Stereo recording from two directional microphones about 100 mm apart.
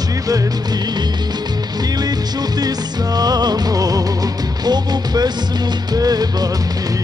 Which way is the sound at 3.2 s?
40° right (ahead or behind).